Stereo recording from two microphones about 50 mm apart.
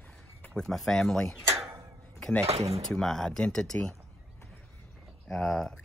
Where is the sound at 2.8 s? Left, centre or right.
Centre.